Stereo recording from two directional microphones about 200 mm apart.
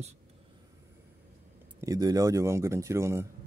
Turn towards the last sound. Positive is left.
turn(degrees=-15)  # may be behind; listen again after turning